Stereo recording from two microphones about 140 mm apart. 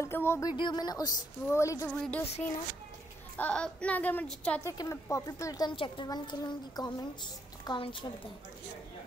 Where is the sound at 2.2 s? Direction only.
50° left (ahead or behind).